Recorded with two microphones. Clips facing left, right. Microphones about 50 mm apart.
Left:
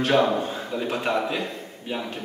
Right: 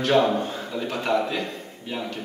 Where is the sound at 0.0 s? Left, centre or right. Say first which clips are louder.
Even; centre.